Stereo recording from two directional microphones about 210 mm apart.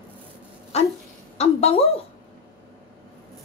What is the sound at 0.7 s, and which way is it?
A woman's voice, 30° left (ahead or behind).